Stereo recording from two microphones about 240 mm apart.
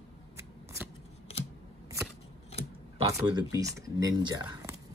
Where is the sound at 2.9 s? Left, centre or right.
Centre.